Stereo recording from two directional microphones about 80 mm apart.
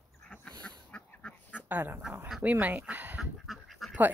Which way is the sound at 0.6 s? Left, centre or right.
Centre.